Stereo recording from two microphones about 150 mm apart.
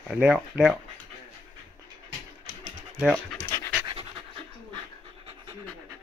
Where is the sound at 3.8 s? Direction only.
35° right (ahead or behind).